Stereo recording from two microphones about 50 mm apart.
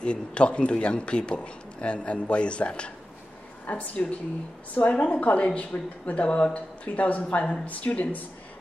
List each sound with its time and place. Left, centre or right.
0.0 s a man's voice: left
3.6 s a man's voice: left